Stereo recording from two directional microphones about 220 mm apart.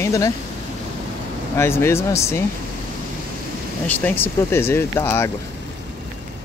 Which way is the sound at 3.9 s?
10° left (ahead or behind).